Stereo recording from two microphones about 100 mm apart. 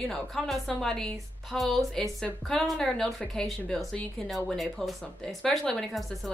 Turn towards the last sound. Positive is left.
turn(degrees=0)  # may be behind; listen again after turning